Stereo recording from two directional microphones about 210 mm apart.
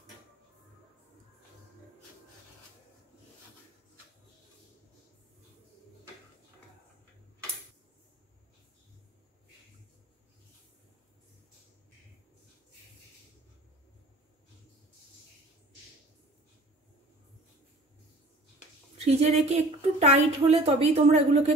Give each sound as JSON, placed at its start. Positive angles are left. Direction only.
{"t": 18.9, "sound": "a woman's voice", "side_deg": -30}